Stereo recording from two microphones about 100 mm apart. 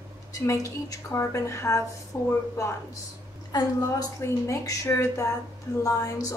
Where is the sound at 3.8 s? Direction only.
30° left (ahead or behind).